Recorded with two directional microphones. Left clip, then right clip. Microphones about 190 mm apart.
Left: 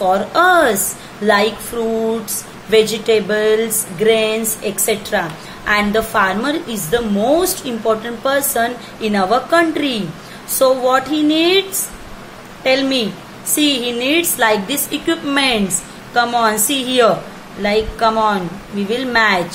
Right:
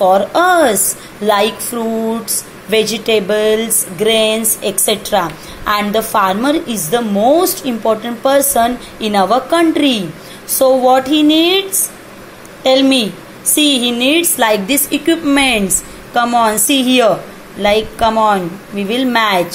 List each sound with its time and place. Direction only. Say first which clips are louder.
0.0 s a woman's voice: right 3 dB; 15° right (ahead or behind)
12.6 s a woman's voice: right 4 dB; 20° right (ahead or behind)